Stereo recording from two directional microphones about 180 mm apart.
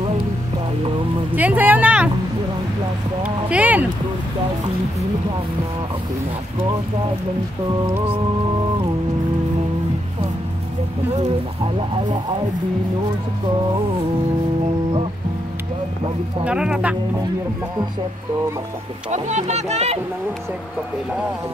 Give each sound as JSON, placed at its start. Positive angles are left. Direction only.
{"t": 1.3, "sound": "vehicle", "side_deg": -10}
{"t": 3.4, "sound": "speech", "side_deg": -10}
{"t": 7.8, "sound": "music", "side_deg": -15}
{"t": 11.1, "sound": "speech", "side_deg": -40}
{"t": 16.4, "sound": "speech", "side_deg": -5}
{"t": 19.0, "sound": "speech", "side_deg": -40}